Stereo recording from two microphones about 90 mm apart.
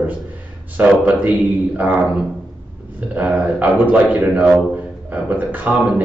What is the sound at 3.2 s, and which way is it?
A man's voice, 20° right (ahead or behind).